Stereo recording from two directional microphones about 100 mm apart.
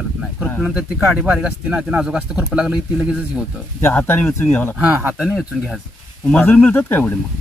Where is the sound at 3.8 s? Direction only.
25° left (ahead or behind).